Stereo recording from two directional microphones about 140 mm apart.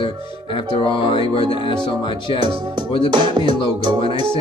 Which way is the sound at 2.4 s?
35° right (ahead or behind).